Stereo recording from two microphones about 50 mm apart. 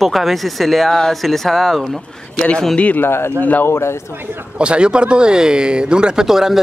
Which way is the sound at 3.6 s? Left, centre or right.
Left.